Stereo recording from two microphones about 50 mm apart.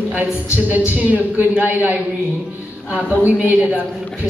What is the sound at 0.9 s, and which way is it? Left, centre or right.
A woman's voice, right.